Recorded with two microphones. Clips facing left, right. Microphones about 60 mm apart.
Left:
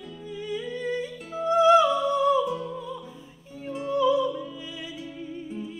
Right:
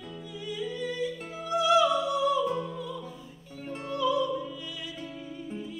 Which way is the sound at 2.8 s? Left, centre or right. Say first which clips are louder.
Left 1 dB; centre.